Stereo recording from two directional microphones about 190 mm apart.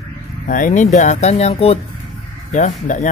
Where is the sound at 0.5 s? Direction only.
45° left (ahead or behind).